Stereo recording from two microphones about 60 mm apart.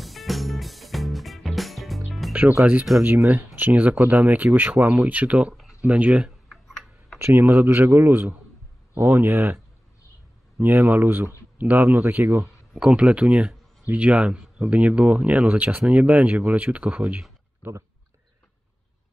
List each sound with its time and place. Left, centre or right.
0.0 s music: centre
2.6 s speech: right
5.5 s a sound: centre
5.8 s speech: right
6.2 s tick-tock: centre
7.2 s speech: right
10.6 s speech: right
12.8 s speech: centre